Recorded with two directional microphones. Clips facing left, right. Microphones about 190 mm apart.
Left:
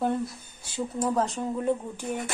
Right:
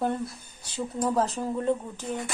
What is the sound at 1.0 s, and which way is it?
Speech, centre (ahead or behind).